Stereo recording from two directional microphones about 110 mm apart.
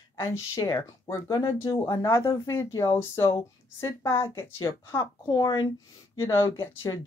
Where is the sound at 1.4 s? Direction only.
50° left (ahead or behind).